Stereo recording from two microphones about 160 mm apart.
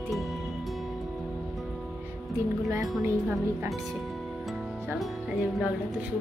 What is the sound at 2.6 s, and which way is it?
Speech, 20° right (ahead or behind).